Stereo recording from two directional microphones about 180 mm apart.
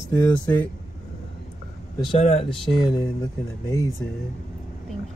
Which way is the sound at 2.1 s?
25° left (ahead or behind).